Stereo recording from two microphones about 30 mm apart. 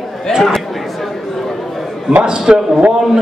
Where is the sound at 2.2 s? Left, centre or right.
Right.